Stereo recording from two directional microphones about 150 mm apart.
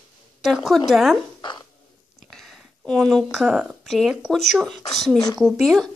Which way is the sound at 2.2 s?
Centre (ahead or behind).